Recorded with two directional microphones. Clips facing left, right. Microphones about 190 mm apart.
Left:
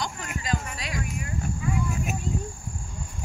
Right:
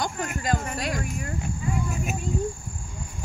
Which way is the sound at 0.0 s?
50° right (ahead or behind).